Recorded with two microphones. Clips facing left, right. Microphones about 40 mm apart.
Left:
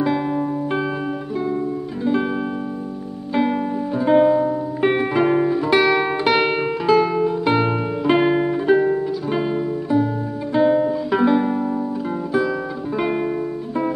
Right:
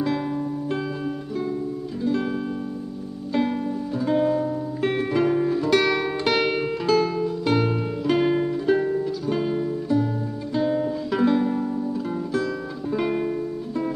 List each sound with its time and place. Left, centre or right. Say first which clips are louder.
0.0 s music: left 4 dB; centre
3.3 s music: left 4 dB; left
12.9 s music: left 2 dB; centre